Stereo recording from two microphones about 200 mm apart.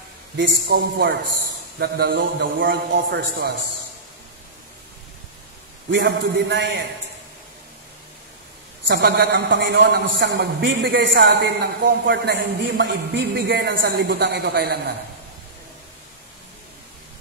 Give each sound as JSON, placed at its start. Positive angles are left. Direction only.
{"t": 0.4, "sound": "a man's voice", "side_deg": -55}
{"t": 5.9, "sound": "a man's voice", "side_deg": -60}
{"t": 8.8, "sound": "a man's voice", "side_deg": -55}